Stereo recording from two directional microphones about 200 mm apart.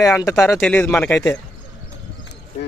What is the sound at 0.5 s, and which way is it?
Speech, 5° left (ahead or behind).